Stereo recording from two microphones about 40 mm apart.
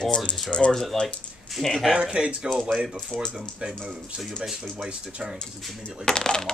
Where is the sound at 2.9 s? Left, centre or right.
Centre.